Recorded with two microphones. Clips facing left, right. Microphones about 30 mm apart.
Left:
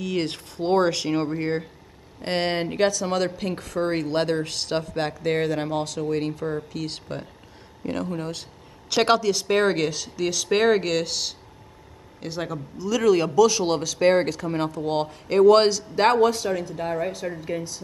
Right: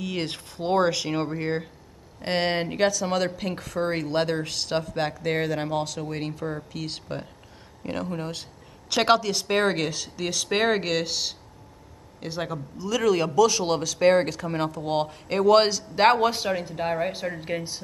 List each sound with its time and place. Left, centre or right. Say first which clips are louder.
0.0 s speech: left 3 dB; centre; by 17.7 s right